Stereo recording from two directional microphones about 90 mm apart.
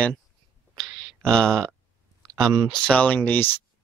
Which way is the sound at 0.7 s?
5° left (ahead or behind).